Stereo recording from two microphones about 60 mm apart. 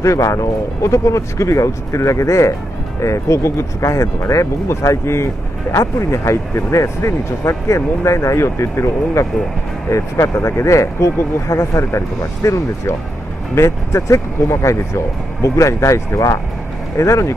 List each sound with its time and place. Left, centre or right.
0.0 s speech: left